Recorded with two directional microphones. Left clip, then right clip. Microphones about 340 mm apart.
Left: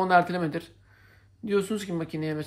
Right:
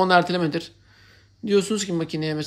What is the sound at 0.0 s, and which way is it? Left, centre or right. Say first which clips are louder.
Speech: right 4 dB; centre.